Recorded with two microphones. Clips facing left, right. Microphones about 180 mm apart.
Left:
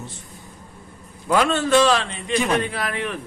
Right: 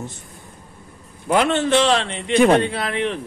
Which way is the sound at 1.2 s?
25° right (ahead or behind).